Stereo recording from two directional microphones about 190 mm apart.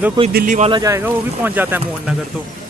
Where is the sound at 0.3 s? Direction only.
50° right (ahead or behind).